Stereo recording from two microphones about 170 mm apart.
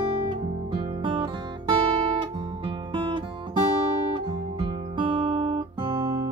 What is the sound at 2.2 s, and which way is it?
Music, 25° right (ahead or behind).